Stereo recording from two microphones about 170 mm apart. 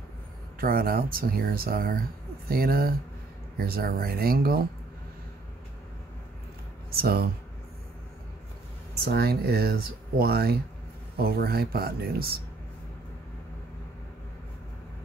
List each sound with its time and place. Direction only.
0.6 s speech: 60° right (ahead or behind)
6.9 s speech: 65° right (ahead or behind)
8.9 s speech: 65° right (ahead or behind)